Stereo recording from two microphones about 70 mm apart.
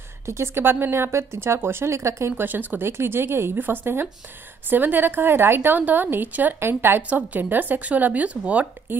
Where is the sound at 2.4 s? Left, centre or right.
Right.